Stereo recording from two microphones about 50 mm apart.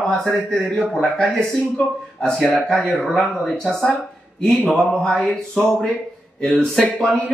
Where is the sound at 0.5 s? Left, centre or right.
Left.